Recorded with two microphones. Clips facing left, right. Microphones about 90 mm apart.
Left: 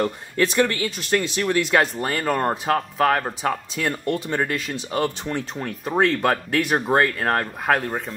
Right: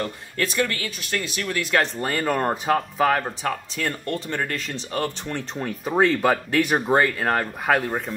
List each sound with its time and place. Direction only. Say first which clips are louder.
0.0 s speech: left 5 dB; 25° left (ahead or behind)
1.8 s speech: left 2 dB; 5° left (ahead or behind)
3.3 s speech: left 2 dB; 15° left (ahead or behind)
5.6 s speech: right 1 dB; centre (ahead or behind)